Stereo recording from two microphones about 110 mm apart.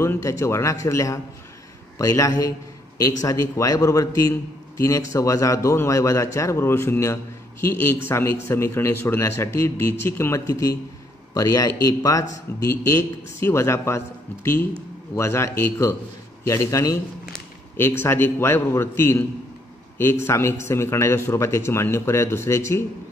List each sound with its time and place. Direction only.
0.0 s a man's voice: 25° left (ahead or behind)